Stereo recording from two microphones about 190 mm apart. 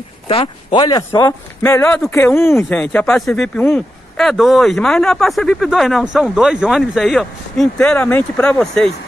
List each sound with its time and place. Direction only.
0.3 s speech: 30° left (ahead or behind)
1.6 s speech: 10° left (ahead or behind)